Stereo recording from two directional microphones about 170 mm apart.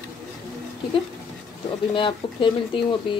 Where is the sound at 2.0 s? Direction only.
30° left (ahead or behind).